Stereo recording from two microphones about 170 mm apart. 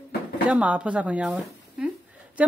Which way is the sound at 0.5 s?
10° right (ahead or behind).